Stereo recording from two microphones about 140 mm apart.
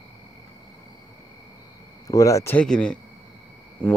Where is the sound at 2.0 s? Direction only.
25° left (ahead or behind); by 3.0 s 5° left (ahead or behind).